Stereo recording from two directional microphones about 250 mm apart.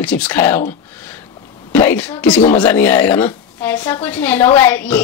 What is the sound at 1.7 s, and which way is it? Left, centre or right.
Speech, centre.